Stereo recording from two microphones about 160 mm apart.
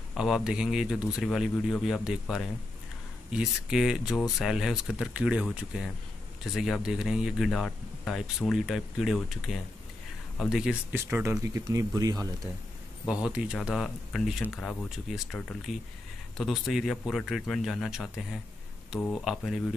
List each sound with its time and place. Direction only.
0.1 s speech: centre (ahead or behind); by 12.3 s 25° right (ahead or behind)
13.0 s speech: 5° right (ahead or behind)